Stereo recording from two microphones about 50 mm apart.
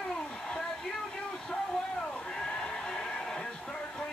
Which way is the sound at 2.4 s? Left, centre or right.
Centre.